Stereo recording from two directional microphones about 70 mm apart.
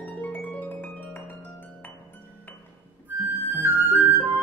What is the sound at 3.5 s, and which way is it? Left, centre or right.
Flute, right.